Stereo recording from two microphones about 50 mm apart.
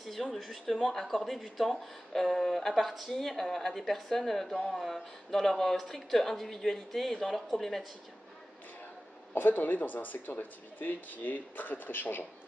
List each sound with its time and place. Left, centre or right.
0.0 s speech: centre
9.3 s speech: left